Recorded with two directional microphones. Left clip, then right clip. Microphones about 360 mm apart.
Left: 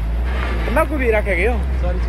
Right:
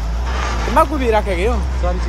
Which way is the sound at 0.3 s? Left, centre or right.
Right.